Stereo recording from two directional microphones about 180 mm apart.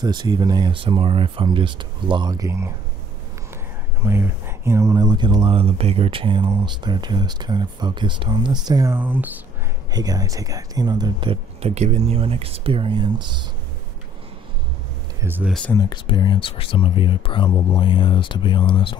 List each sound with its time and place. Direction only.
0.0 s speech: 25° right (ahead or behind)
4.0 s speech: 15° right (ahead or behind)
9.9 s speech: 20° right (ahead or behind)
15.2 s speech: 10° right (ahead or behind)
15.5 s speech: 5° left (ahead or behind)
15.8 s speech: 25° left (ahead or behind)